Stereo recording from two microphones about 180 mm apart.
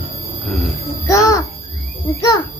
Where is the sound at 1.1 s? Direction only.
20° left (ahead or behind).